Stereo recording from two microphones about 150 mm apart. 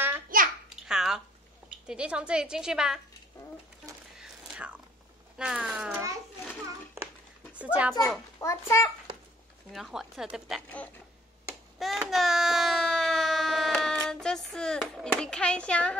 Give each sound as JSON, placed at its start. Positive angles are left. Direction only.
{"t": 0.3, "sound": "a sound", "side_deg": -70}
{"t": 0.7, "sound": "babbling", "side_deg": -5}
{"t": 1.9, "sound": "a woman's voice", "side_deg": -5}
{"t": 4.2, "sound": "whispering", "side_deg": -5}
{"t": 5.4, "sound": "speech", "side_deg": -5}
{"t": 7.5, "sound": "speech", "side_deg": -10}
{"t": 8.4, "sound": "a child's voice", "side_deg": 20}
{"t": 9.7, "sound": "a woman's voice", "side_deg": 0}
{"t": 11.8, "sound": "a sound", "side_deg": 0}
{"t": 14.0, "sound": "a child's voice", "side_deg": 5}